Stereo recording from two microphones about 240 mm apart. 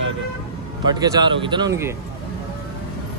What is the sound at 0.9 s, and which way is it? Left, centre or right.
Speech, centre.